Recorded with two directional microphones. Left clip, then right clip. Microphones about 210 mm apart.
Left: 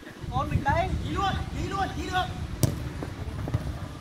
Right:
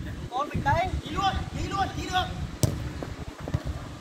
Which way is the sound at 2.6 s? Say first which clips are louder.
Even; 5° left (ahead or behind).